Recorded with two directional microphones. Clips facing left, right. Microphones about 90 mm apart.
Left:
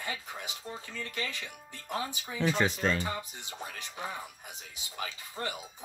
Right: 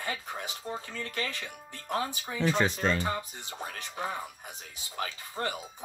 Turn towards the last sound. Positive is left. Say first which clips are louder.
# right 3 dB
turn(degrees=-45)  # may be behind; listen again after turning